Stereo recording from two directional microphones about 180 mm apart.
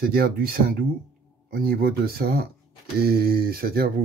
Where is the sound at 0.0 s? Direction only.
55° right (ahead or behind).